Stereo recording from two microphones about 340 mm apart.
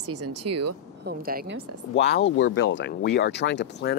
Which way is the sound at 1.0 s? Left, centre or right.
Right.